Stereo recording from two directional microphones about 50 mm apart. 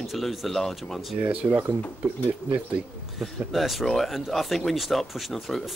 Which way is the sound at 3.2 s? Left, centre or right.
Centre.